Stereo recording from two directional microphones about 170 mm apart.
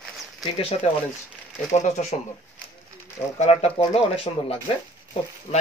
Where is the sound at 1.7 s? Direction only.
40° left (ahead or behind).